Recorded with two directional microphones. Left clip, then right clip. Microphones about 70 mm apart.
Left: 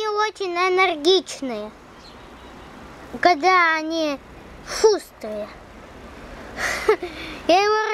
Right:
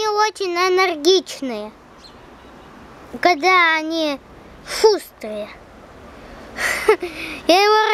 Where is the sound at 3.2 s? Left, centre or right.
Right.